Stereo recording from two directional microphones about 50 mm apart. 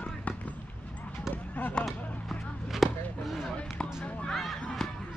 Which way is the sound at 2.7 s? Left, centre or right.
Centre.